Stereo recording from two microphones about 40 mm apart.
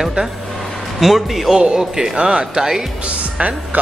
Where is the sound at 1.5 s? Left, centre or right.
Right.